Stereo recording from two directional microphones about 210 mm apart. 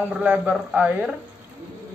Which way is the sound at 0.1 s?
5° right (ahead or behind).